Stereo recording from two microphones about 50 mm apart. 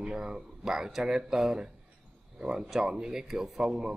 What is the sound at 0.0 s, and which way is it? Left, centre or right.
A man's voice, centre.